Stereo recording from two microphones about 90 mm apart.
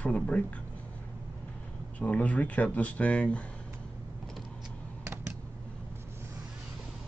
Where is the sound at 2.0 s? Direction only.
15° left (ahead or behind).